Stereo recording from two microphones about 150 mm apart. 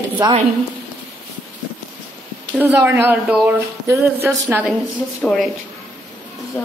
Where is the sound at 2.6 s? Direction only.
15° right (ahead or behind).